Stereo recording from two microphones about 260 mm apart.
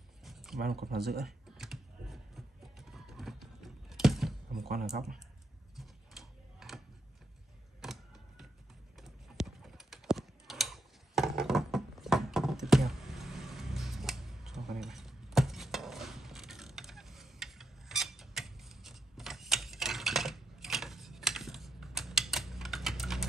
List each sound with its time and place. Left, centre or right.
0.2 s a sound: centre
0.6 s speech: right
1.6 s music: centre
5.8 s a sound: centre
7.8 s music: centre
9.0 s clip-clop: centre